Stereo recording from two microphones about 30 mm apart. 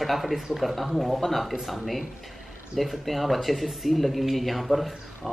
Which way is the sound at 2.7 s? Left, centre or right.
Centre.